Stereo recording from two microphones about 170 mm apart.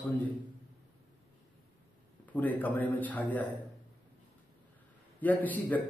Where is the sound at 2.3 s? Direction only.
10° left (ahead or behind).